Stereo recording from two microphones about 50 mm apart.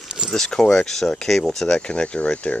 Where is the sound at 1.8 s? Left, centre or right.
Left.